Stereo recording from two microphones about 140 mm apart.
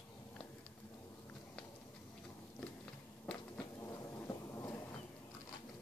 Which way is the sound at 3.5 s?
20° left (ahead or behind).